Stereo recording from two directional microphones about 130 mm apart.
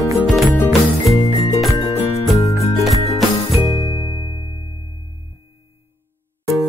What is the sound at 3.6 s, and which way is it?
Music, 30° left (ahead or behind).